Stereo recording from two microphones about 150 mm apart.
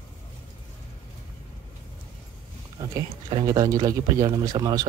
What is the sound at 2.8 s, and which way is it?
Speech, 20° right (ahead or behind).